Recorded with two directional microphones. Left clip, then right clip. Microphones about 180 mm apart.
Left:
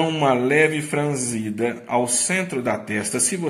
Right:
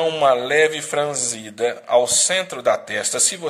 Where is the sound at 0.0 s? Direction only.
40° right (ahead or behind).